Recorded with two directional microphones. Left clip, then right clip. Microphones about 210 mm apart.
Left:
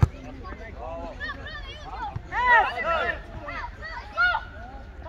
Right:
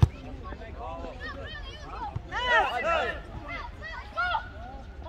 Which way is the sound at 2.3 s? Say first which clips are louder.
Left 5 dB; 60° right (ahead or behind).